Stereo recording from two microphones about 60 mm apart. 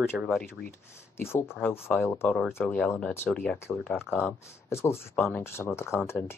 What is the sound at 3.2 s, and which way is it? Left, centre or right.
Speech, left.